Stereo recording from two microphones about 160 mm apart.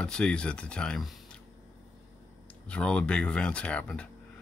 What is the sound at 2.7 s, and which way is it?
Speech, 5° left (ahead or behind).